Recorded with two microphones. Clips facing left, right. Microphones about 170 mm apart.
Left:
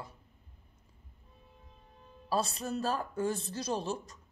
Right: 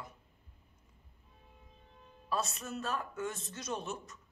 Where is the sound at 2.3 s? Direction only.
30° left (ahead or behind).